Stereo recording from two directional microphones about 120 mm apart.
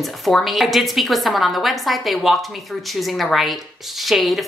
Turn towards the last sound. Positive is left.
turn(degrees=0)  # may be behind; listen again after turning